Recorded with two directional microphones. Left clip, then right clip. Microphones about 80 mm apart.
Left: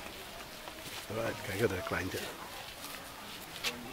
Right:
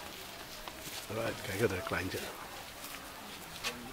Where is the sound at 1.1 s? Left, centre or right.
Centre.